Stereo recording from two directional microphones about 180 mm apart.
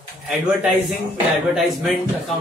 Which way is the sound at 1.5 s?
Centre (ahead or behind).